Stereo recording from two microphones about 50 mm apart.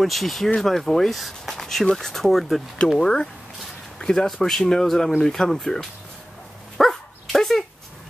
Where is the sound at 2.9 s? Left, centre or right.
Centre.